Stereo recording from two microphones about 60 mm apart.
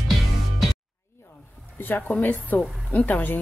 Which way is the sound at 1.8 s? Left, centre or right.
Left.